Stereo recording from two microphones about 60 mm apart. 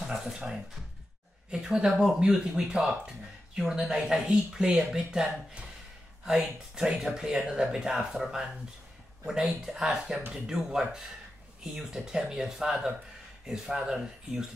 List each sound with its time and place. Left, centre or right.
0.0 s speech: centre